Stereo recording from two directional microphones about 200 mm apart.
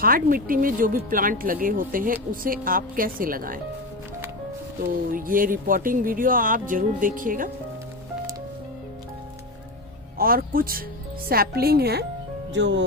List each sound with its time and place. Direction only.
0.0 s speech: 45° right (ahead or behind)
5.1 s speech: 45° right (ahead or behind)
10.1 s speech: 45° right (ahead or behind)
12.5 s speech: 65° right (ahead or behind)